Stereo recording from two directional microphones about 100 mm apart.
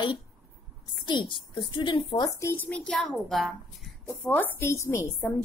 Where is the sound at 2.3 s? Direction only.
25° left (ahead or behind); by 3.9 s centre (ahead or behind).